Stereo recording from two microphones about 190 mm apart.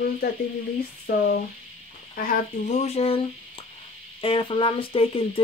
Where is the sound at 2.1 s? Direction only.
50° left (ahead or behind).